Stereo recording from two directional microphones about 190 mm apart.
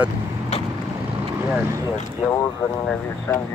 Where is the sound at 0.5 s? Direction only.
35° left (ahead or behind).